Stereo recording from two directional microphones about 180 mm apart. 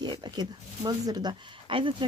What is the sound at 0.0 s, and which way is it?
Speech, 25° right (ahead or behind).